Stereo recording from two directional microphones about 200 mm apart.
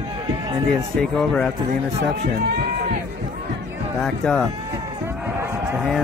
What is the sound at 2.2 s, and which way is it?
Speech, 50° right (ahead or behind).